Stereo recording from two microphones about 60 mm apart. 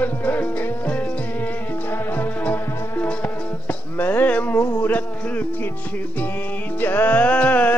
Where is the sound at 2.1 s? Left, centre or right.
Left.